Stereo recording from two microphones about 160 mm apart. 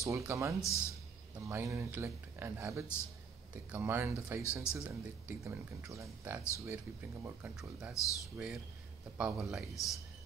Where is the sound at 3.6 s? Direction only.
10° right (ahead or behind).